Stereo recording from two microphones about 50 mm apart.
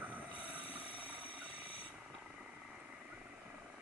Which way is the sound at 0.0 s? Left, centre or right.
Right.